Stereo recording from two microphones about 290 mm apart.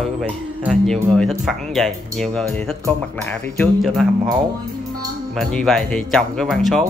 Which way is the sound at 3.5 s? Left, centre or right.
Centre.